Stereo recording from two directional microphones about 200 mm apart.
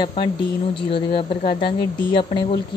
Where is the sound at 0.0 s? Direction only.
25° left (ahead or behind).